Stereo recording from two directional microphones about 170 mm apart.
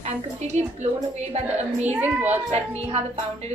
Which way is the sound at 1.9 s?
10° right (ahead or behind).